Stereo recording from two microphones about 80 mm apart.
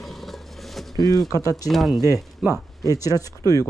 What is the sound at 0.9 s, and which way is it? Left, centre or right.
Speech, left.